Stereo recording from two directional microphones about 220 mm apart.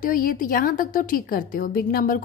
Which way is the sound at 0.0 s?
40° left (ahead or behind).